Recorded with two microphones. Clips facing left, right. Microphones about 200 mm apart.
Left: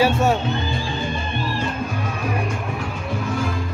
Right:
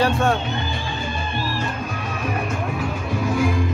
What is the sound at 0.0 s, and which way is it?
Speech, 5° left (ahead or behind).